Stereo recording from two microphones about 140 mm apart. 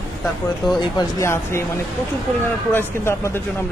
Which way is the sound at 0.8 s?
30° left (ahead or behind).